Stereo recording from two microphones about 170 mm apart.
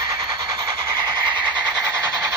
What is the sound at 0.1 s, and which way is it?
Train, 20° right (ahead or behind).